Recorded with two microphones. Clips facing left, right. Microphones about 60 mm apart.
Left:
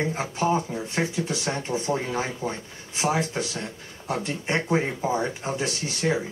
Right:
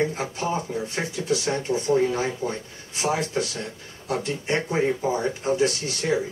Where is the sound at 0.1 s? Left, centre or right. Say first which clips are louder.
Left 3 dB; left.